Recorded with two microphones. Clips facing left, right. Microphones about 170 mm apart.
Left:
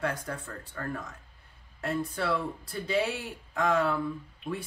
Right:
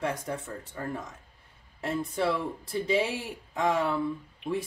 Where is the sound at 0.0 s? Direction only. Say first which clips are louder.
Right 1 dB; 25° right (ahead or behind).